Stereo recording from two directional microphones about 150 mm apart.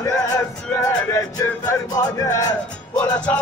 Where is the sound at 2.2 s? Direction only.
25° left (ahead or behind).